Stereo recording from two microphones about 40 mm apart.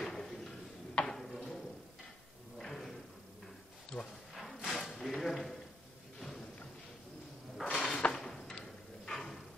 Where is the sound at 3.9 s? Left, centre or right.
Left.